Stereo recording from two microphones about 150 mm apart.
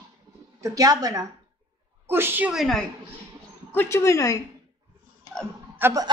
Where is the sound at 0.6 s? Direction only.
25° right (ahead or behind); by 2.9 s centre (ahead or behind).